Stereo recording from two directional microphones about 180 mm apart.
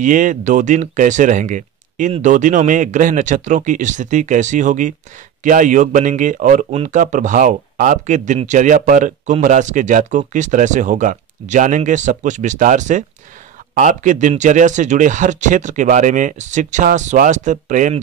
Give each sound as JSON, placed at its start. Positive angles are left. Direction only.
{"t": 0.0, "sound": "speech", "side_deg": -45}